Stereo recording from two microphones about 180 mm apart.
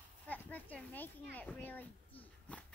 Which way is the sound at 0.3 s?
10° left (ahead or behind).